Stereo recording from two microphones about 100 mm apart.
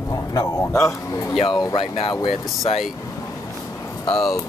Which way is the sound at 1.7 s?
65° left (ahead or behind).